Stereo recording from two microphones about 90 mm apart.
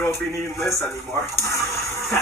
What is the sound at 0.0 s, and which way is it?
Speech, 30° left (ahead or behind).